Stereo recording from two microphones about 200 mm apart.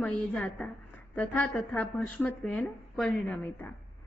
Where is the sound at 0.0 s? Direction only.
5° left (ahead or behind).